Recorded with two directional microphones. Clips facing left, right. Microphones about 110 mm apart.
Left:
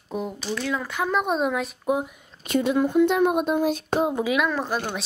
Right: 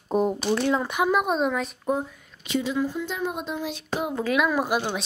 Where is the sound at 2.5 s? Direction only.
55° left (ahead or behind).